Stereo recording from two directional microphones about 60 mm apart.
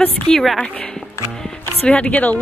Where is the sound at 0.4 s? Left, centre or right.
Centre.